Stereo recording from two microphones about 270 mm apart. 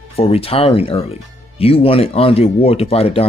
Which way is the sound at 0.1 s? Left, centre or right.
Left.